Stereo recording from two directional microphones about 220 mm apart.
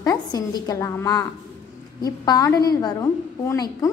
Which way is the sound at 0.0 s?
15° left (ahead or behind).